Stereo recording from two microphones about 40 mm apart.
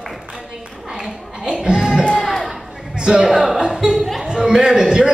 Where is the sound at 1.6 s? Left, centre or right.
Centre.